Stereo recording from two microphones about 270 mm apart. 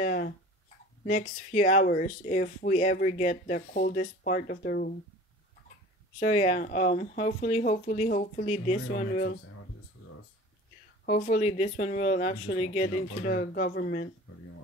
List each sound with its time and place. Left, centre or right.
0.0 s a sound: left
1.0 s speech: left
6.1 s speech: left
11.1 s speech: left